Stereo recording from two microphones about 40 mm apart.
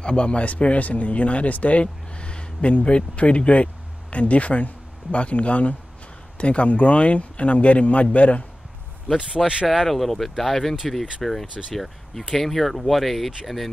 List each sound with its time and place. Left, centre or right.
0.0 s speech: left
2.1 s a sound: left
2.8 s speech: left
9.4 s speech: centre